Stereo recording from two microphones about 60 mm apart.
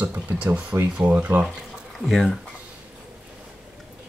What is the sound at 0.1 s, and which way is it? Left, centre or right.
Speech, right.